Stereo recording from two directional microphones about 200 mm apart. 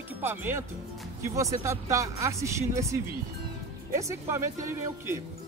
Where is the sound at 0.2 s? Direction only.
10° right (ahead or behind).